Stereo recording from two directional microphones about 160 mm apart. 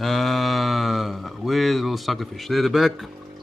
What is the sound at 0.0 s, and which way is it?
Mantra, centre (ahead or behind).